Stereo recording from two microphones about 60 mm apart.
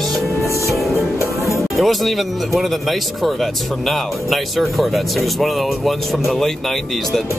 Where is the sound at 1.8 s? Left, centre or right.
Centre.